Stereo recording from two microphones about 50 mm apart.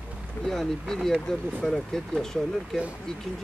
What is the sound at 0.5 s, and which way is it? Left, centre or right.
Speech, centre.